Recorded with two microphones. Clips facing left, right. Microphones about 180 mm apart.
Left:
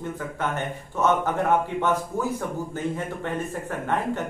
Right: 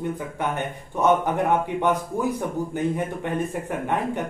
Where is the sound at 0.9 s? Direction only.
15° right (ahead or behind).